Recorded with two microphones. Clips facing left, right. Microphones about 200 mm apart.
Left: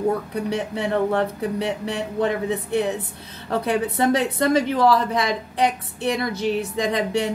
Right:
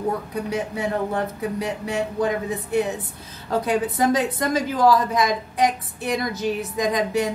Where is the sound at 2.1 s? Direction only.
25° left (ahead or behind).